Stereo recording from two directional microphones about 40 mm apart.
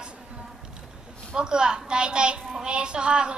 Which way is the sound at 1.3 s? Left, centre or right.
Right.